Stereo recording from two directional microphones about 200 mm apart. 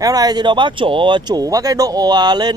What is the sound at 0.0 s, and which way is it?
A man's voice, 20° right (ahead or behind).